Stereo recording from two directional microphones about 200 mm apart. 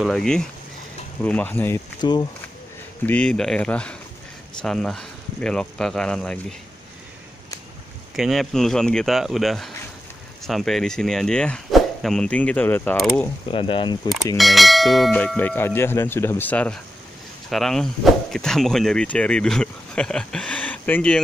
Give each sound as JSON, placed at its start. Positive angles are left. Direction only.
{"t": 0.0, "sound": "speech", "side_deg": 0}
{"t": 1.2, "sound": "clang", "side_deg": 10}
{"t": 2.0, "sound": "speech", "side_deg": 20}
{"t": 3.1, "sound": "speech", "side_deg": 5}
{"t": 8.2, "sound": "speech", "side_deg": 0}
{"t": 13.5, "sound": "speech", "side_deg": 25}
{"t": 14.0, "sound": "clang", "side_deg": 0}
{"t": 17.5, "sound": "speech", "side_deg": 0}